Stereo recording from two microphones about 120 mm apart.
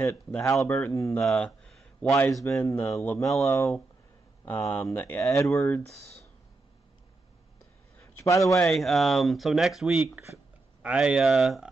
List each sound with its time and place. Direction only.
0.7 s speech: 20° left (ahead or behind)
1.2 s speech: 5° left (ahead or behind)
2.3 s speech: 25° left (ahead or behind)
3.1 s speech: centre (ahead or behind)
3.4 s speech: 25° left (ahead or behind)
8.4 s speech: centre (ahead or behind)